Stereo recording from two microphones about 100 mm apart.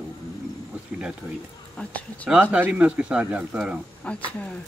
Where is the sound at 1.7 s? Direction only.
15° left (ahead or behind).